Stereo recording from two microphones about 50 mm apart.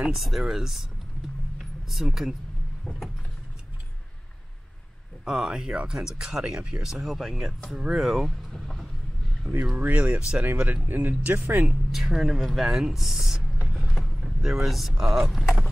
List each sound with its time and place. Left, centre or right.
0.1 s speech: centre
1.9 s speech: centre
5.2 s speech: centre
6.9 s speech: centre
8.5 s vehicle: centre
9.5 s speech: centre
9.8 s speech: right
10.4 s speech: right
11.9 s speech: centre
13.7 s a sound: centre
14.2 s speech: centre